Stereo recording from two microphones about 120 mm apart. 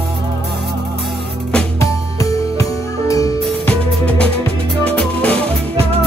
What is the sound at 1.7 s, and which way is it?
Music, 25° left (ahead or behind).